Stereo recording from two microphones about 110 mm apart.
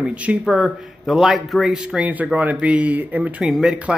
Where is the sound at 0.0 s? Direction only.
10° right (ahead or behind).